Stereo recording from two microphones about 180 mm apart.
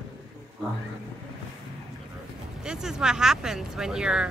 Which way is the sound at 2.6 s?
5° right (ahead or behind).